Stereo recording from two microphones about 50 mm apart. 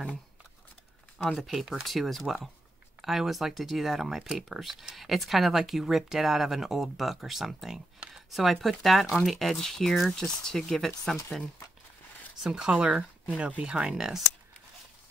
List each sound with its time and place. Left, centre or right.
1.4 s speech: centre
12.4 s speech: centre
13.8 s speech: centre